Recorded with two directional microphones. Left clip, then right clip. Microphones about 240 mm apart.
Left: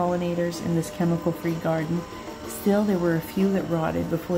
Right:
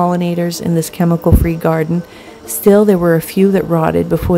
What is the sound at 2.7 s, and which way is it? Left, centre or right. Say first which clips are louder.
A woman's voice: right 14 dB; right.